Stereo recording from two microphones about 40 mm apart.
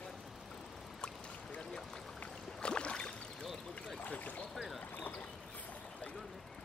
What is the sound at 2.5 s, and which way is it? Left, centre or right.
Boat, left.